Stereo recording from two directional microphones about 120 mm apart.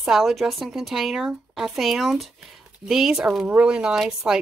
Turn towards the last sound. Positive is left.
turn(degrees=-5)  # may be behind; listen again after turning